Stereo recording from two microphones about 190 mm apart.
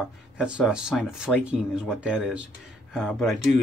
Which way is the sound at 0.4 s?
5° right (ahead or behind).